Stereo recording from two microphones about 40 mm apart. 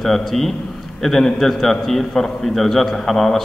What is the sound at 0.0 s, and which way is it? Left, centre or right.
A man's voice, centre.